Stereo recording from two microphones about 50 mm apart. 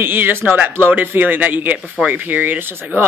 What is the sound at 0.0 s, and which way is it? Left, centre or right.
Speech, right.